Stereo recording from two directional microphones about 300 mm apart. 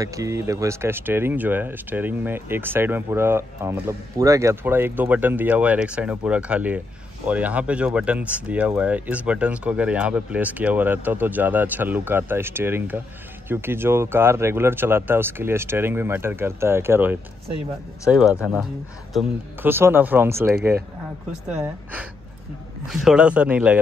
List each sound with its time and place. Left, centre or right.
0.0 s speech: centre
22.8 s speech: centre